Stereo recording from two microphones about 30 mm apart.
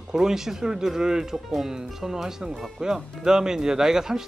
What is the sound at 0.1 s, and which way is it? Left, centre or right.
Speech, centre.